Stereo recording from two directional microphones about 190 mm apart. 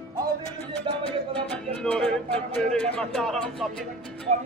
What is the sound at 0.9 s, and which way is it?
Speech, 25° right (ahead or behind).